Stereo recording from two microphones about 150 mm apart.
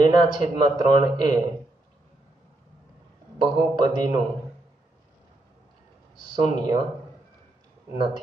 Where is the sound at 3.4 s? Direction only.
30° right (ahead or behind).